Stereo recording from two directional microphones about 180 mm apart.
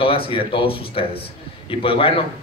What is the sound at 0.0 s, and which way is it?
A man's voice, 30° left (ahead or behind).